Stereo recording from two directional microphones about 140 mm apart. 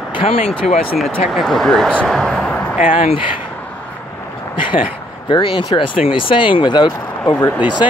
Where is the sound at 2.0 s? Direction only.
5° left (ahead or behind).